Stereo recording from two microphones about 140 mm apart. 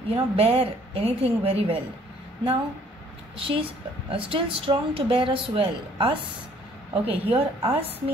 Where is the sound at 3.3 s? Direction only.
40° right (ahead or behind).